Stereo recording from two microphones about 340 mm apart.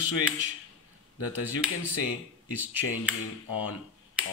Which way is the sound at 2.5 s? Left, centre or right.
Centre.